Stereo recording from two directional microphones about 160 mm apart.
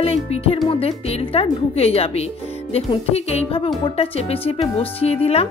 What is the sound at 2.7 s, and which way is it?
Speech, 40° left (ahead or behind).